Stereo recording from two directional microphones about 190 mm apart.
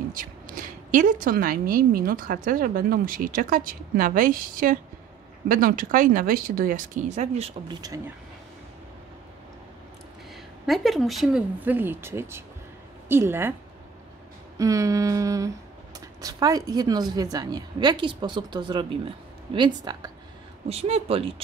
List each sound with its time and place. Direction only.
0.1 s a woman's voice: 45° right (ahead or behind)
10.7 s speech: centre (ahead or behind)
14.6 s a woman's voice: 15° right (ahead or behind)
20.6 s speech: 35° right (ahead or behind)